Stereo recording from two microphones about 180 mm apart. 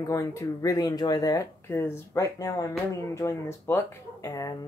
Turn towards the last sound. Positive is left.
turn(degrees=20)  # may be behind; listen again after turning